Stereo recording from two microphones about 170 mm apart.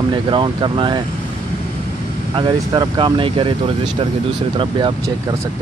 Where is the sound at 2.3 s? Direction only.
25° right (ahead or behind).